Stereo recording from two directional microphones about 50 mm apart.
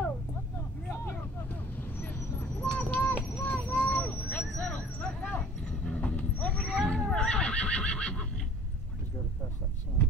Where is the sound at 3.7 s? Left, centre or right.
Left.